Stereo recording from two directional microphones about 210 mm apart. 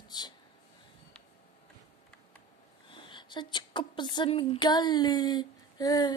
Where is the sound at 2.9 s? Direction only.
25° left (ahead or behind).